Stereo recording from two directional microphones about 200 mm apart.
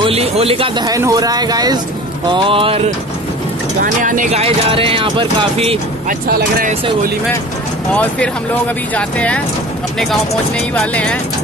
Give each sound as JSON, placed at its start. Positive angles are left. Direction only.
{"t": 0.0, "sound": "speech", "side_deg": -30}
{"t": 3.8, "sound": "speech", "side_deg": -40}
{"t": 6.0, "sound": "speech", "side_deg": -45}
{"t": 7.9, "sound": "speech", "side_deg": 5}
{"t": 10.7, "sound": "speech", "side_deg": 5}